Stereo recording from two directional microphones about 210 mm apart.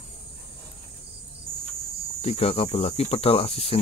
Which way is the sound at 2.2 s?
30° left (ahead or behind).